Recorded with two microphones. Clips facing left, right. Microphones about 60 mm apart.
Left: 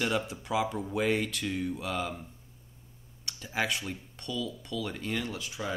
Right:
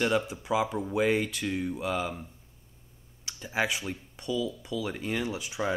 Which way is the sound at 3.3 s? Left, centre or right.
Centre.